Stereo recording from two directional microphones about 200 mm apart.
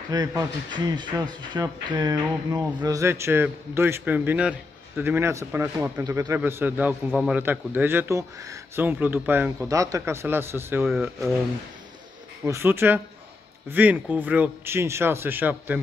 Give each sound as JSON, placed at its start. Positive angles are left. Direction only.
{"t": 0.1, "sound": "a man's voice", "side_deg": -20}
{"t": 10.9, "sound": "speech", "side_deg": 0}
{"t": 12.4, "sound": "a man's voice", "side_deg": -10}